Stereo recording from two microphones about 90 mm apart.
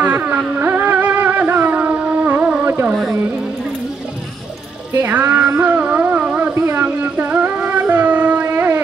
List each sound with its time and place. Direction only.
0.0 s music: 20° right (ahead or behind)
2.6 s carnatic music: 20° right (ahead or behind)
2.9 s carnatic music: centre (ahead or behind)
4.9 s music: 20° right (ahead or behind)